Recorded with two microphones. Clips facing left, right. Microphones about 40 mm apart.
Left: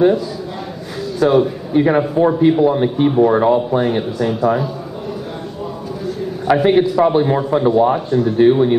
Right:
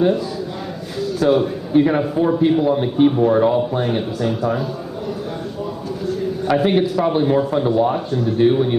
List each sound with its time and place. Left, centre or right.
1.2 s a man's voice: centre
6.4 s speech: centre
7.9 s speech: left
8.4 s speech: centre